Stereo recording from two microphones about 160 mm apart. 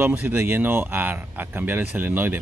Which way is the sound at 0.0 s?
10° right (ahead or behind).